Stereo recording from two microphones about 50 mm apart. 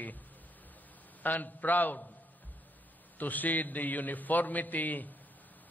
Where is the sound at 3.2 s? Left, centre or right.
Left.